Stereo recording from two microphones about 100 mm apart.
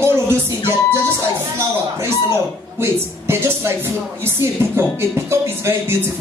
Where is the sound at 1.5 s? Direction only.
25° right (ahead or behind).